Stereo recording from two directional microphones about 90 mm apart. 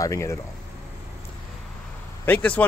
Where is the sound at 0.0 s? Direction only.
35° left (ahead or behind).